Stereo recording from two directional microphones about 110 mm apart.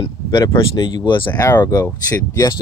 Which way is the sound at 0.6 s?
45° left (ahead or behind).